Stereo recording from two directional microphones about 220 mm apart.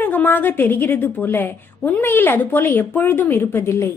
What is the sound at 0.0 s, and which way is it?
A woman's voice, 10° left (ahead or behind).